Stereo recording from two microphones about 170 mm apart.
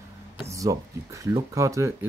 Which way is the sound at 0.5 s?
20° right (ahead or behind).